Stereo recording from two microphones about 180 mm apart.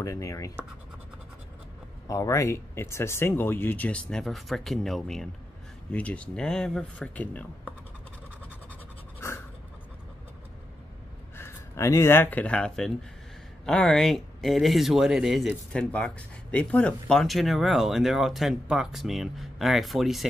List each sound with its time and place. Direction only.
0.0 s speech: 20° left (ahead or behind)
2.0 s speech: 15° left (ahead or behind)
11.3 s speech: 15° left (ahead or behind)